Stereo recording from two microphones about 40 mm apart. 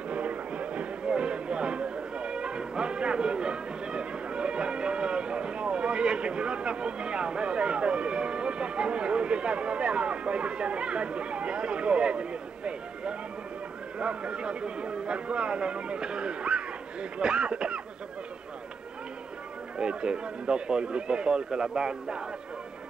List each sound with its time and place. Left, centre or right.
0.1 s music: right
13.9 s speech: right
19.8 s speech: right